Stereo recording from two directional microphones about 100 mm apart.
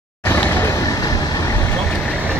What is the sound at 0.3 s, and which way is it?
Vehicle, 25° left (ahead or behind).